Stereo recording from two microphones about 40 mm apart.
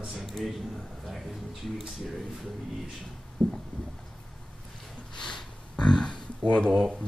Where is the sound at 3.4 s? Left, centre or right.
Left.